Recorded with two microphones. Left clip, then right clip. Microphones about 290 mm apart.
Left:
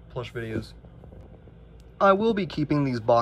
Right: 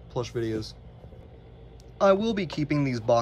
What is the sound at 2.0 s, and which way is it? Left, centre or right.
Speech, centre.